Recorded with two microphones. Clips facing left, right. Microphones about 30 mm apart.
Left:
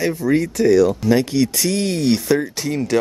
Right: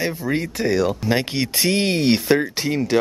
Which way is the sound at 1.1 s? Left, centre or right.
Right.